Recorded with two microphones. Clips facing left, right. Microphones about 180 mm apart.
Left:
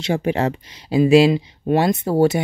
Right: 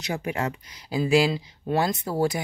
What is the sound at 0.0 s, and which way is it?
Speech, 25° left (ahead or behind).